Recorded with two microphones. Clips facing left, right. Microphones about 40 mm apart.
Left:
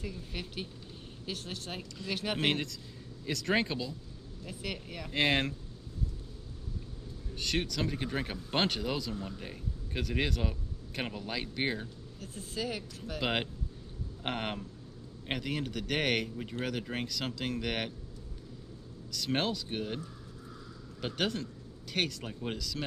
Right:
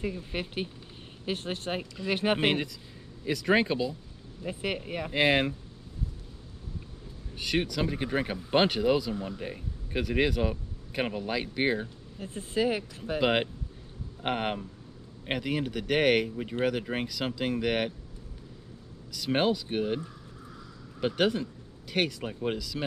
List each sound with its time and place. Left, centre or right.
0.0 s speech: right
2.4 s speech: centre
4.4 s speech: right
5.1 s speech: centre
7.3 s speech: centre
12.2 s speech: right
13.2 s speech: centre
19.1 s speech: centre
21.0 s speech: centre